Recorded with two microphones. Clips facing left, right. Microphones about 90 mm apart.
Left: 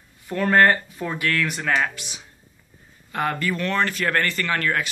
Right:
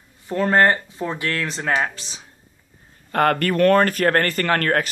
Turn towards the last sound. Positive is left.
turn(degrees=-50)  # may be behind; listen again after turning